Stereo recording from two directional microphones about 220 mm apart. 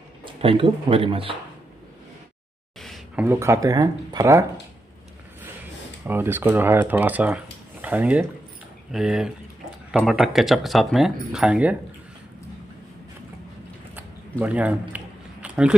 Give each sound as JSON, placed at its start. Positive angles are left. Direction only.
{"t": 0.2, "sound": "speech", "side_deg": -25}
{"t": 2.8, "sound": "a sound", "side_deg": 0}
{"t": 3.3, "sound": "speech", "side_deg": -15}
{"t": 6.0, "sound": "speech", "side_deg": -10}
{"t": 14.4, "sound": "speech", "side_deg": -5}
{"t": 15.4, "sound": "a sound", "side_deg": -5}